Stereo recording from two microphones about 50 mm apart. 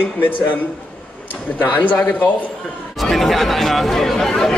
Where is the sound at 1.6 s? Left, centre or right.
Left.